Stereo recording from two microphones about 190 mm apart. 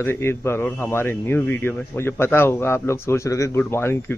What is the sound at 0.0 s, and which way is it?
A man's voice, 15° left (ahead or behind).